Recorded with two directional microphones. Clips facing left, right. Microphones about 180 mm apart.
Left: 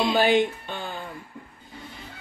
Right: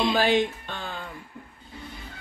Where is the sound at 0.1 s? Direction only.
5° left (ahead or behind).